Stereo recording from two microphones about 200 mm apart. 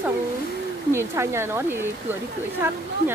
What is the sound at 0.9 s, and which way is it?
Speech, 15° right (ahead or behind).